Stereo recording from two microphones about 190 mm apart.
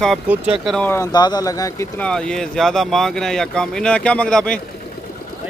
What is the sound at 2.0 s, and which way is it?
Speech, 5° left (ahead or behind).